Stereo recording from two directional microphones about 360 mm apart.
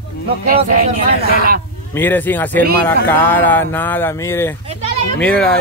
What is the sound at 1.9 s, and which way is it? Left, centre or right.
A man's voice, centre.